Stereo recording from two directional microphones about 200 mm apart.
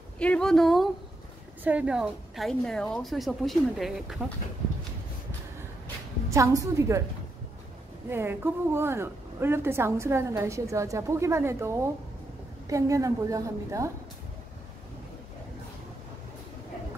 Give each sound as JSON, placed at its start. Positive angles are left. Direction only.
{"t": 0.2, "sound": "a woman's voice", "side_deg": 5}
{"t": 6.3, "sound": "a woman's voice", "side_deg": -15}
{"t": 8.1, "sound": "a woman's voice", "side_deg": -10}